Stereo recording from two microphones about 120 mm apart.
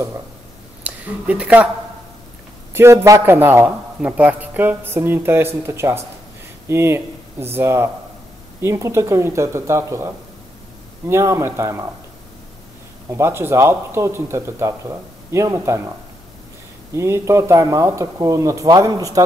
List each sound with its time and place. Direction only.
0.8 s speech: 10° right (ahead or behind)
2.7 s a man's voice: 20° right (ahead or behind)
13.1 s a man's voice: 20° right (ahead or behind)
16.9 s a man's voice: 25° right (ahead or behind)